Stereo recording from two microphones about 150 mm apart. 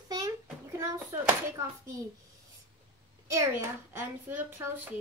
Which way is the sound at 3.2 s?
20° right (ahead or behind).